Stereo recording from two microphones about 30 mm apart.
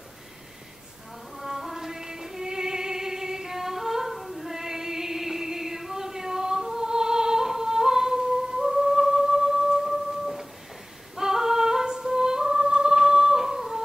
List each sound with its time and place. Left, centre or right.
1.3 s music: centre
2.4 s singing: right
9.8 s music: centre
11.1 s female singing: centre